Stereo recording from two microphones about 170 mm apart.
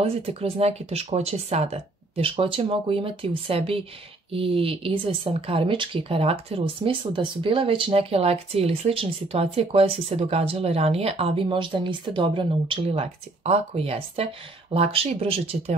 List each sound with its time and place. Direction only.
0.0 s speech: 35° right (ahead or behind)